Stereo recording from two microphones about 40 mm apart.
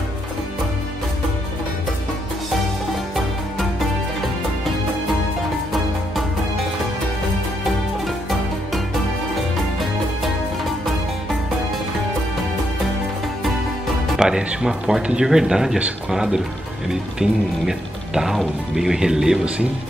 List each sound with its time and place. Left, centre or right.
8.0 s music: centre
14.2 s music: centre
14.6 s speech: centre
15.0 s speech: right